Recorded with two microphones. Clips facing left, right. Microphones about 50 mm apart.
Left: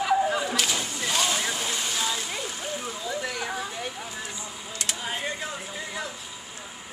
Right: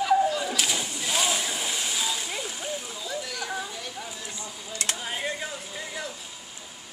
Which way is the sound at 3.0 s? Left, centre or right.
Left.